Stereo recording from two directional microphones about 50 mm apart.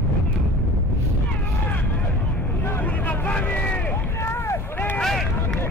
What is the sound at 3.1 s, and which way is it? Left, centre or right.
Vehicle, left.